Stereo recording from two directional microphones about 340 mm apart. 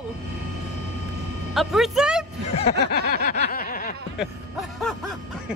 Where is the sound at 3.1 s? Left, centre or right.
Left.